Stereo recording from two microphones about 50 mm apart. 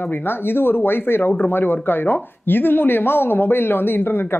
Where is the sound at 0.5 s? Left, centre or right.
Left.